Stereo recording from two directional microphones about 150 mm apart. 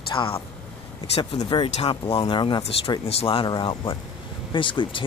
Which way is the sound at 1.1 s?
50° left (ahead or behind).